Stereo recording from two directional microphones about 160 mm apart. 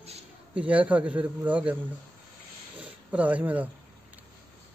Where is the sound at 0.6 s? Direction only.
10° right (ahead or behind).